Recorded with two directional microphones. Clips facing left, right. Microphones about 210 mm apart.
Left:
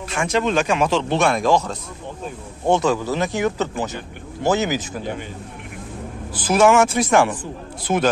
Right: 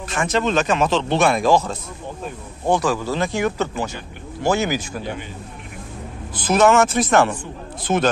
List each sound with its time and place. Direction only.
0.1 s speech: 10° left (ahead or behind)
1.1 s speech: 5° right (ahead or behind)
2.6 s speech: 25° left (ahead or behind)
6.3 s speech: 10° left (ahead or behind)